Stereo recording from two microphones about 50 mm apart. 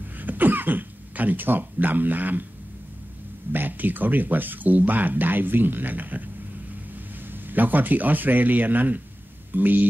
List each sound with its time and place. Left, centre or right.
0.2 s speech: right
3.5 s speech: right
7.2 s speech: right